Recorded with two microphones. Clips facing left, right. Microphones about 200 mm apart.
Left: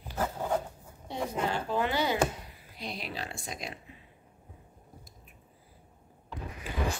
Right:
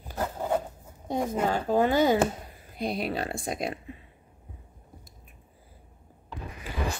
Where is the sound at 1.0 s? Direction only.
45° right (ahead or behind).